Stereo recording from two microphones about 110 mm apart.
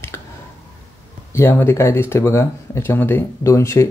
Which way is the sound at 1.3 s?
20° left (ahead or behind).